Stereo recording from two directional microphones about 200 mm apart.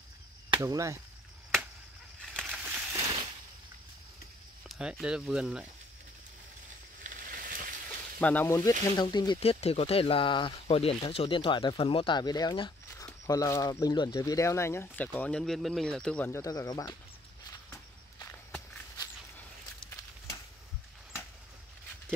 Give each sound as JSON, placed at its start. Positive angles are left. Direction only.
{"t": 0.6, "sound": "speech", "side_deg": -15}
{"t": 2.3, "sound": "a sound", "side_deg": -5}
{"t": 4.6, "sound": "speech", "side_deg": 0}
{"t": 7.2, "sound": "a sound", "side_deg": -45}
{"t": 8.2, "sound": "speech", "side_deg": 10}
{"t": 18.2, "sound": "walk", "side_deg": 10}